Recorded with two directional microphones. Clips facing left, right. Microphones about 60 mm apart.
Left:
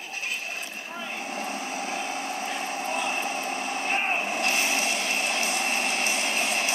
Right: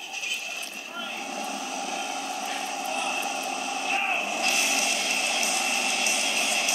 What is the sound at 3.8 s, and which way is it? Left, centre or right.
Vehicle, left.